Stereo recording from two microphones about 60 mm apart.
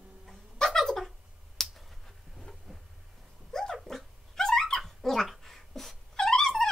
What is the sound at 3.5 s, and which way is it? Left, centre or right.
Dog, centre.